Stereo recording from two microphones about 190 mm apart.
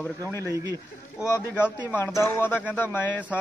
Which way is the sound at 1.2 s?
15° left (ahead or behind).